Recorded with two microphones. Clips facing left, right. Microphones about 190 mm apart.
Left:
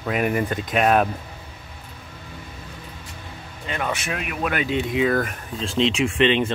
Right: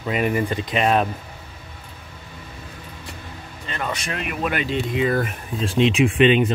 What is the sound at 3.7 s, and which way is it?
Speech, 10° left (ahead or behind).